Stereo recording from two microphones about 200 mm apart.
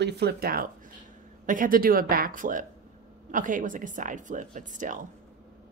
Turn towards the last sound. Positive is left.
turn(degrees=-40)  # may be behind; listen again after turning